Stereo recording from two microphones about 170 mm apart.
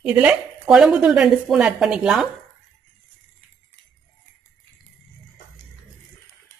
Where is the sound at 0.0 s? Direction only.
5° right (ahead or behind).